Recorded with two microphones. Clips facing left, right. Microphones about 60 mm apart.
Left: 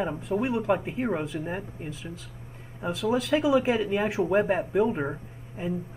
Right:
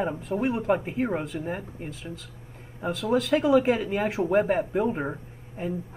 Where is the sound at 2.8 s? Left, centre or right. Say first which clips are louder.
Right 1 dB; centre.